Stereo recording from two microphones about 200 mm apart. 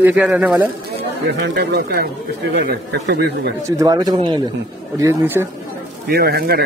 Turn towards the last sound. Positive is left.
turn(degrees=-50)  # may be behind; listen again after turning